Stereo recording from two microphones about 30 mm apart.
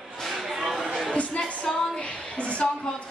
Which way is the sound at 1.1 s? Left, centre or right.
Left.